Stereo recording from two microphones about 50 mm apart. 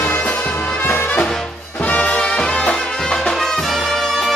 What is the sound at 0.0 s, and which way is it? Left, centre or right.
Music, left.